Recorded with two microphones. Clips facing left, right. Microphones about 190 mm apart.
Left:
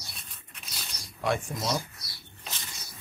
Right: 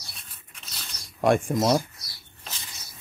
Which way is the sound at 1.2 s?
50° right (ahead or behind).